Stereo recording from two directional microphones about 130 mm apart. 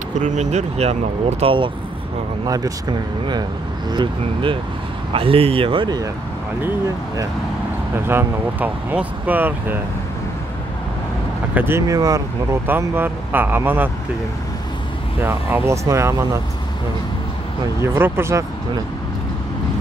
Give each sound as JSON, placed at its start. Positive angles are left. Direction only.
{"t": 0.2, "sound": "speech", "side_deg": -65}
{"t": 1.4, "sound": "speech", "side_deg": -40}
{"t": 2.4, "sound": "speech", "side_deg": -30}
{"t": 8.1, "sound": "speech", "side_deg": -15}
{"t": 11.5, "sound": "speech", "side_deg": -15}
{"t": 11.9, "sound": "speech", "side_deg": -25}
{"t": 12.6, "sound": "speech", "side_deg": -15}
{"t": 15.2, "sound": "speech", "side_deg": -20}
{"t": 17.8, "sound": "speech", "side_deg": -15}